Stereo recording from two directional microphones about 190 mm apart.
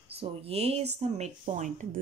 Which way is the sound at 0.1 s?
30° right (ahead or behind).